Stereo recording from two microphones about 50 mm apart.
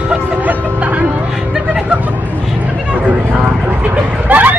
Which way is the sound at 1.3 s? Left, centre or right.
Centre.